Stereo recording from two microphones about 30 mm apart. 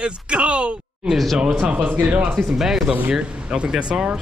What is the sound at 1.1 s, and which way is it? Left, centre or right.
Speech, right.